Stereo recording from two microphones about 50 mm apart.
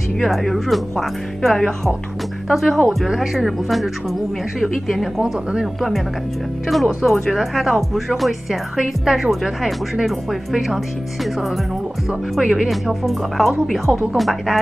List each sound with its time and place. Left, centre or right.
0.2 s speech: centre
5.2 s speech: centre
6.7 s speech: centre
12.1 s speech: centre